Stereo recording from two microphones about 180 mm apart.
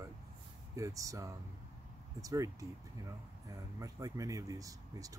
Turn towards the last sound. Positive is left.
turn(degrees=-20)  # may be behind; listen again after turning